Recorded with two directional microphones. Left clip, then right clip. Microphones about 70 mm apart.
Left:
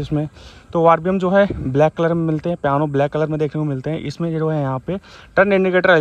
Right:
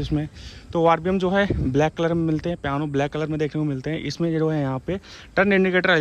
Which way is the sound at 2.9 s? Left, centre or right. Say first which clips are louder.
Left 6 dB; right.